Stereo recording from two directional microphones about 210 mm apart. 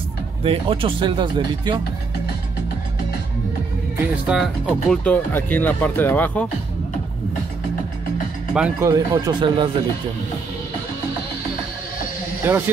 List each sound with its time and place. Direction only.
0.4 s speech: 25° right (ahead or behind)
4.3 s speech: centre (ahead or behind)
8.5 s speech: 5° right (ahead or behind)
8.9 s speech: 15° right (ahead or behind)
12.4 s speech: 10° right (ahead or behind)